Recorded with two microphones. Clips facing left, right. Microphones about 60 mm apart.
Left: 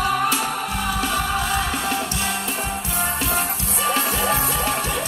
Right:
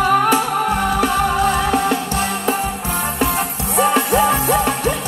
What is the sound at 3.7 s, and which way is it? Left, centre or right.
Music, right.